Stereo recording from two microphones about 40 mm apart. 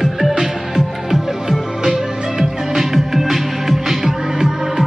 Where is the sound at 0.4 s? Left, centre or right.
Centre.